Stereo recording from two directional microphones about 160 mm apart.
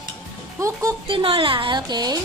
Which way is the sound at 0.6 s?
20° right (ahead or behind).